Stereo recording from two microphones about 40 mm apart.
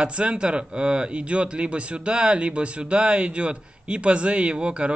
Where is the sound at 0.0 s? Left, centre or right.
Right.